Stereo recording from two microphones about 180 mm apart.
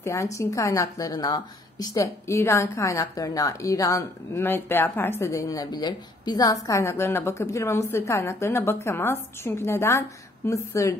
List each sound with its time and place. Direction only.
0.0 s a woman's voice: 15° left (ahead or behind)